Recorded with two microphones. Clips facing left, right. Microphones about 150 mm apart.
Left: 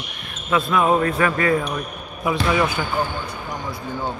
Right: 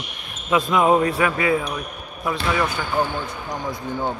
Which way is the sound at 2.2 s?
5° left (ahead or behind).